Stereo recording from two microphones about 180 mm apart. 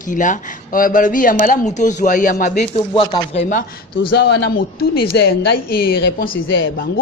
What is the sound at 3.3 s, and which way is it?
Speech, 45° left (ahead or behind).